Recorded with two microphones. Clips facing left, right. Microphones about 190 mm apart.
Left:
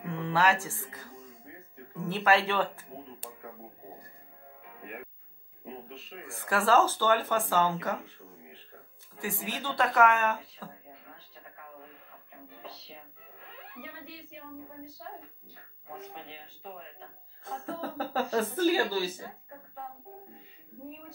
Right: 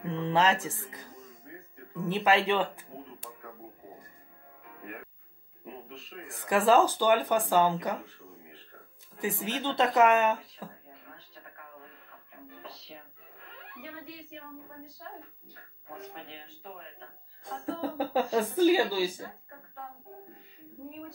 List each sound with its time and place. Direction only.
0.1 s speech: 20° right (ahead or behind)
6.2 s speech: 15° right (ahead or behind)
9.2 s speech: 20° right (ahead or behind)
17.7 s speech: 15° right (ahead or behind)